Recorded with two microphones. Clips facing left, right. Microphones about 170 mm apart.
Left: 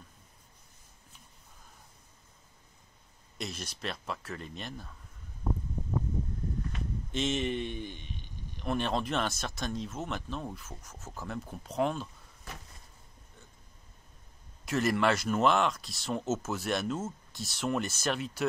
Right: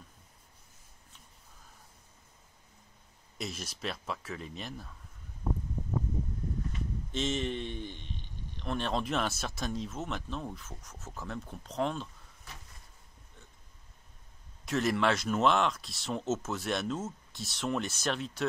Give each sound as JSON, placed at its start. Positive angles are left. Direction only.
{"t": 3.3, "sound": "speech", "side_deg": -5}
{"t": 7.1, "sound": "speech", "side_deg": 0}
{"t": 14.6, "sound": "speech", "side_deg": 0}